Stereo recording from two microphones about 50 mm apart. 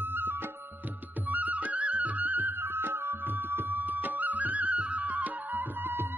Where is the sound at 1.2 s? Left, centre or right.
Right.